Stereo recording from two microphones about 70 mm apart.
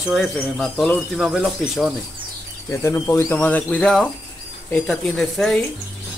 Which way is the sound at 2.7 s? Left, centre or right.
Left.